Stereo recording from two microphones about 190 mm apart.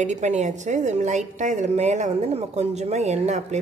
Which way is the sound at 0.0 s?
40° right (ahead or behind).